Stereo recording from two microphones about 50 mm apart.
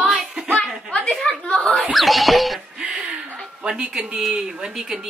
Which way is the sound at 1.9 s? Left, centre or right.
Centre.